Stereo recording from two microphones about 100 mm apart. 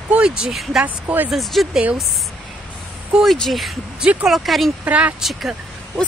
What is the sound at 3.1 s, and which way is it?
Speech, centre (ahead or behind).